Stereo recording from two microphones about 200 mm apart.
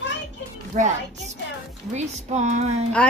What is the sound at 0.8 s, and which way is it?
Speech, 40° right (ahead or behind).